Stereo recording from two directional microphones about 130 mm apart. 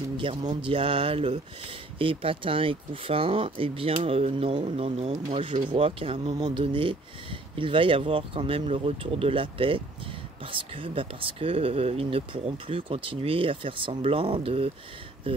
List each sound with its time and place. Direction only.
0.4 s speech: 35° right (ahead or behind)